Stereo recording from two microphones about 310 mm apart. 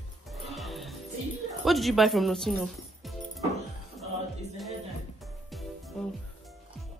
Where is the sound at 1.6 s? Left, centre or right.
Centre.